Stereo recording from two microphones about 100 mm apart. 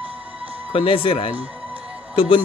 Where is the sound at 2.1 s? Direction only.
60° left (ahead or behind).